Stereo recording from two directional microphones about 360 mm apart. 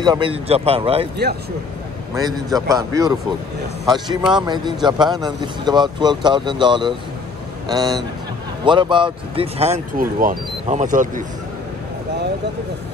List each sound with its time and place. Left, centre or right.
0.0 s speech: centre
2.1 s speech: centre